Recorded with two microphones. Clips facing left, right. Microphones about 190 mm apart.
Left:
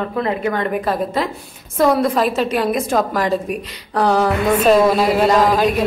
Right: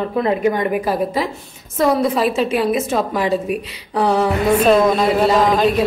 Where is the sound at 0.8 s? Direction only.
5° right (ahead or behind).